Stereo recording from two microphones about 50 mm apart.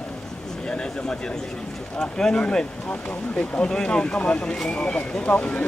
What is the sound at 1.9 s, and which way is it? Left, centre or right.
Speech, centre.